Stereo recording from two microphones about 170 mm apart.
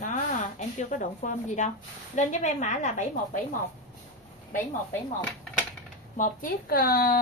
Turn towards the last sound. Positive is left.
turn(degrees=60)  # may be behind; listen again after turning